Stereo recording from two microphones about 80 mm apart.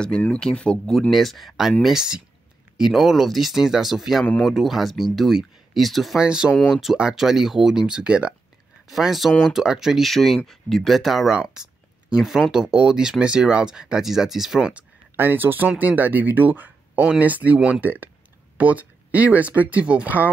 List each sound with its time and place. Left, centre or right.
0.4 s speech: centre
1.1 s speech: centre
6.2 s speech: centre
8.8 s speech: centre
15.1 s speech: right